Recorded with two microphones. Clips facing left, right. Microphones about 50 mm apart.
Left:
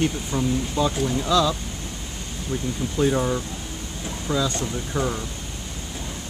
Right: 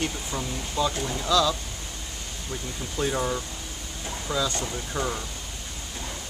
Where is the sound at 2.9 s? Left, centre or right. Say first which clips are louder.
Left 5 dB; centre.